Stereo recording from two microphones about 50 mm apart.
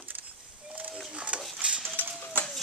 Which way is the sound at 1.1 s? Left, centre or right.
Right.